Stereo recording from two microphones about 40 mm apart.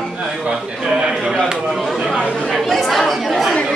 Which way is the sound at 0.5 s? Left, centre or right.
Centre.